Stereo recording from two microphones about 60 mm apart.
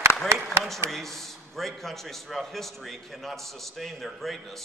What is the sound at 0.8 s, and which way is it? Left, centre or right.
A man's voice, centre.